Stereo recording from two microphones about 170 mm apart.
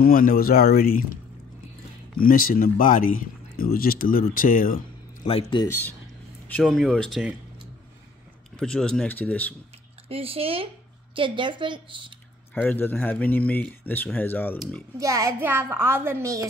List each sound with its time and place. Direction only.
0.0 s speech: 55° left (ahead or behind)
2.2 s speech: 55° left (ahead or behind)
5.2 s speech: 30° left (ahead or behind)
5.7 s speech: 10° left (ahead or behind)
8.5 s speech: 5° left (ahead or behind)
10.0 s a woman's voice: 35° right (ahead or behind)
12.5 s speech: 10° left (ahead or behind)
15.0 s a child's voice: 20° right (ahead or behind)